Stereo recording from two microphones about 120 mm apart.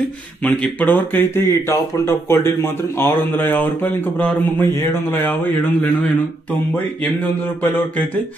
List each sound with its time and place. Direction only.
0.4 s speech: 10° left (ahead or behind)
7.6 s speech: 15° left (ahead or behind)